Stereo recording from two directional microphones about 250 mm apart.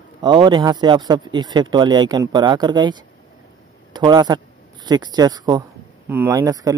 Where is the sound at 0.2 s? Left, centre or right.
Centre.